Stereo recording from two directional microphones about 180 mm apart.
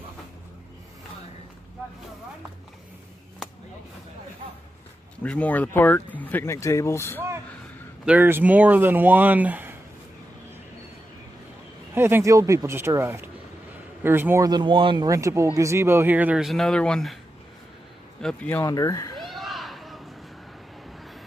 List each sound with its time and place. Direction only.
5.2 s speech: 5° left (ahead or behind)
8.0 s speech: 10° right (ahead or behind)
11.9 s speech: 15° right (ahead or behind); by 17.2 s centre (ahead or behind)
18.2 s speech: 10° left (ahead or behind)
19.1 s a sound: centre (ahead or behind)